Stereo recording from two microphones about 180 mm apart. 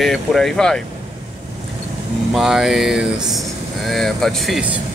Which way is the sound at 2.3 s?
5° right (ahead or behind).